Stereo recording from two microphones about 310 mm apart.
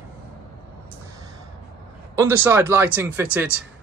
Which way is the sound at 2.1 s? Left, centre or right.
Centre.